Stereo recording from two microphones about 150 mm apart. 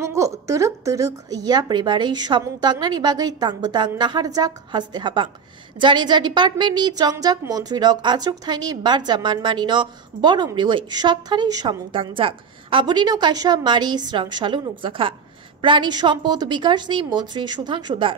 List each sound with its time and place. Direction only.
0.0 s a woman's voice: 20° right (ahead or behind)